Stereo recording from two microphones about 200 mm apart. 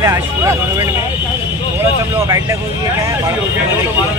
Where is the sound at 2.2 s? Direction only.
15° right (ahead or behind).